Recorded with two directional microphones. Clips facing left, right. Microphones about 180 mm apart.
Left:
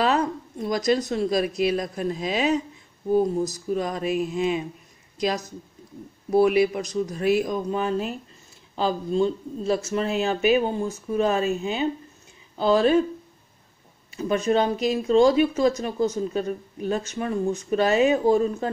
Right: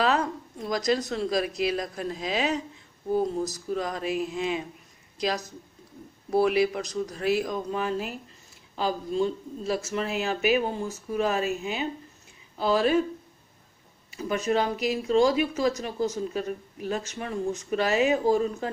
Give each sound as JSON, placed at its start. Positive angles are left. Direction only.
{"t": 0.7, "sound": "speech", "side_deg": 20}
{"t": 6.3, "sound": "speech", "side_deg": 20}
{"t": 14.1, "sound": "speech", "side_deg": 30}